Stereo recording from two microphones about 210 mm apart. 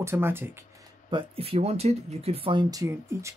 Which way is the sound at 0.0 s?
10° right (ahead or behind).